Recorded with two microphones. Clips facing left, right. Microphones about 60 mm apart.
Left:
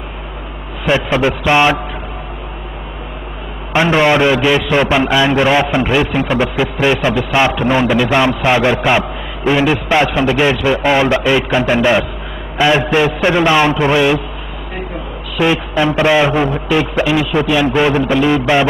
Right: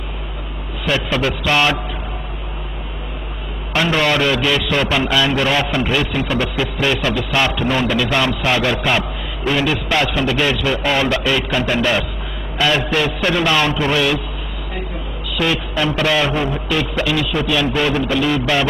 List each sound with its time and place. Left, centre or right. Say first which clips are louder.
0.8 s a man's voice: left 5 dB; left
3.7 s a man's voice: left 5 dB; left
15.3 s a man's voice: left 5 dB; left